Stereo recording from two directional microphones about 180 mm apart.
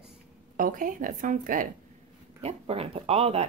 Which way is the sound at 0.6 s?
45° right (ahead or behind).